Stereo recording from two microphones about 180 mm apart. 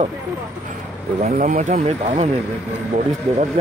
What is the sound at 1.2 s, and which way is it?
Speech, 45° right (ahead or behind).